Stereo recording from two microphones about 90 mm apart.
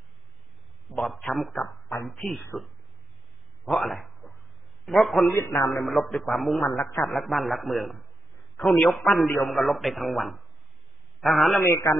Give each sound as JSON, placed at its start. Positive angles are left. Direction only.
{"t": 0.8, "sound": "a man's voice", "side_deg": 0}
{"t": 3.6, "sound": "a man's voice", "side_deg": 5}
{"t": 5.3, "sound": "a man's voice", "side_deg": 30}
{"t": 5.9, "sound": "a man's voice", "side_deg": 0}
{"t": 11.6, "sound": "a man's voice", "side_deg": 35}